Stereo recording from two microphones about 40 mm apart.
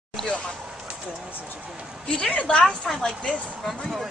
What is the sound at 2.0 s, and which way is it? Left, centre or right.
Speech, left.